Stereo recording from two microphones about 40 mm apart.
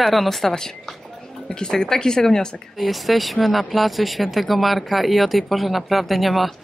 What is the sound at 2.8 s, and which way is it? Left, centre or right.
Speech, centre.